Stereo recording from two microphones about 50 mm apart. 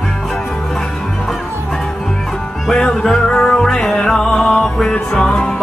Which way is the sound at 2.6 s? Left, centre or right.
Centre.